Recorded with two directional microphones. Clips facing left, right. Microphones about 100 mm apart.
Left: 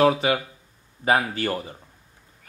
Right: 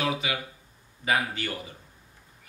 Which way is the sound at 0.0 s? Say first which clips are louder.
Left 10 dB; 40° left (ahead or behind).